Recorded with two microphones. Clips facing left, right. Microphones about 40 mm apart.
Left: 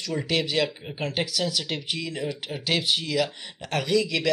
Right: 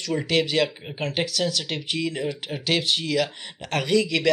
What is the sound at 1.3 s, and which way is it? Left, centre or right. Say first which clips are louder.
Speech: right 2 dB; centre.